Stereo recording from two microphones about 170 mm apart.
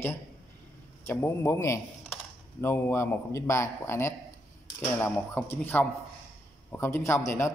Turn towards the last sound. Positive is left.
turn(degrees=15)  # may be behind; listen again after turning